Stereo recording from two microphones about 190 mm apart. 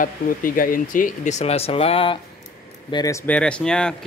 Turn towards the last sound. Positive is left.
turn(degrees=5)  # may be behind; listen again after turning